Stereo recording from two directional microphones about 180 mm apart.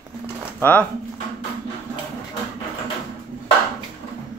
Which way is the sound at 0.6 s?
10° left (ahead or behind).